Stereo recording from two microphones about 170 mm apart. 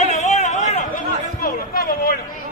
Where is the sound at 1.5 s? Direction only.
65° left (ahead or behind).